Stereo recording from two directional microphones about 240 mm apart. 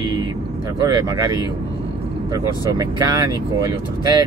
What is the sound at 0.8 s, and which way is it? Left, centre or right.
Speech, centre.